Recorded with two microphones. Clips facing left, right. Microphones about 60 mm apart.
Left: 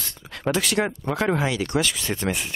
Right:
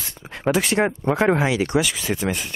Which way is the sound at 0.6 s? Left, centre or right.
Right.